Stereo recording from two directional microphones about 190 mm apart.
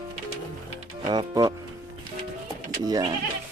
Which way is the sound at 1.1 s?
20° right (ahead or behind).